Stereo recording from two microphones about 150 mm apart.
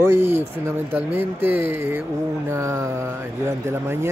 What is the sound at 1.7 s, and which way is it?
Speech, 15° right (ahead or behind).